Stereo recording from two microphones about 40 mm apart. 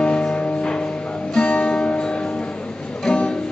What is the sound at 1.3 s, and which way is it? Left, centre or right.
Music, left.